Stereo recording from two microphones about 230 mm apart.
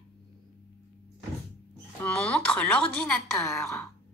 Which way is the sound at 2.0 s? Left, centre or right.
Centre.